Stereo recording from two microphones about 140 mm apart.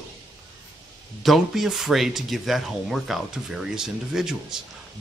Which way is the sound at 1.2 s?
Centre (ahead or behind).